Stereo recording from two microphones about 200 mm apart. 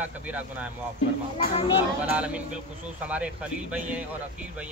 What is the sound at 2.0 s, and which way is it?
Speech, 5° right (ahead or behind).